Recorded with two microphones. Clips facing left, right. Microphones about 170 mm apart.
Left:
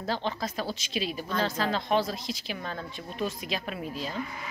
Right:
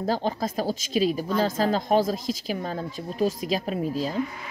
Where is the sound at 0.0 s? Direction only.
40° right (ahead or behind).